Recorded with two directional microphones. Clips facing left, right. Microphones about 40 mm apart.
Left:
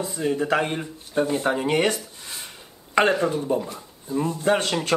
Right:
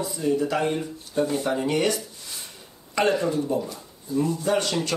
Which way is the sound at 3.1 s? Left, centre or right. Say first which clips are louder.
Left 1 dB; left.